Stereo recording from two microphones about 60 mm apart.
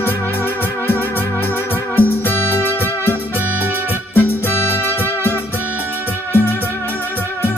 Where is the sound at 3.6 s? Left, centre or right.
Right.